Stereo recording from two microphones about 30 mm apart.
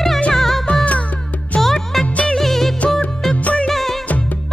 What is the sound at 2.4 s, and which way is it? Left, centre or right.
Music of bollywood, centre.